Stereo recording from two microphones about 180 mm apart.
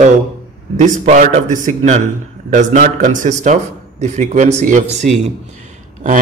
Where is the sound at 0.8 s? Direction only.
45° right (ahead or behind).